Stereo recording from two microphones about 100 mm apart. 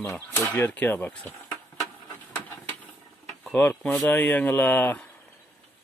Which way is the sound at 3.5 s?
15° left (ahead or behind).